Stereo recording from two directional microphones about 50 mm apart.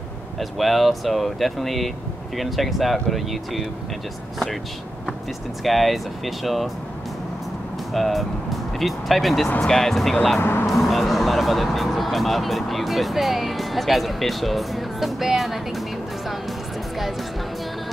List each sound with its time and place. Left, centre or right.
0.4 s speech: centre
5.6 s speech: centre
7.9 s speech: centre
10.4 s speech: left
10.7 s speech: centre